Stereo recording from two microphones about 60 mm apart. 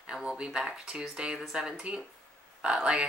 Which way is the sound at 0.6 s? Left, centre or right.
Centre.